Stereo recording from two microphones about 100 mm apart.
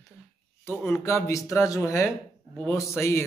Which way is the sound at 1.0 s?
30° left (ahead or behind).